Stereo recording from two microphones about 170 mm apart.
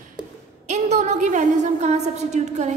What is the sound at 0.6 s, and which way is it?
A woman's voice, 45° right (ahead or behind).